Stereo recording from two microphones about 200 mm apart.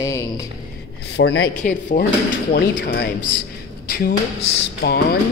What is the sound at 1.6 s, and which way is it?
Speech, 40° left (ahead or behind).